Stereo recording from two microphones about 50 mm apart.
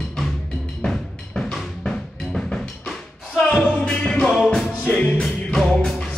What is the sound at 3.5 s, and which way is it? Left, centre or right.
Music, centre.